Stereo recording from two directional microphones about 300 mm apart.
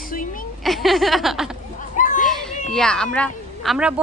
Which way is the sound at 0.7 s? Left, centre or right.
Centre.